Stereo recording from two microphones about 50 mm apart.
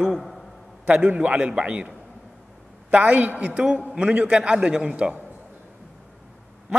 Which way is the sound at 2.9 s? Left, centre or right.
Right.